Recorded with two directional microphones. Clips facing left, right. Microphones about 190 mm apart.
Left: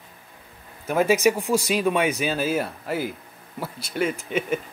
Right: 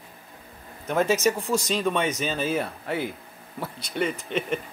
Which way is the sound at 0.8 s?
10° left (ahead or behind).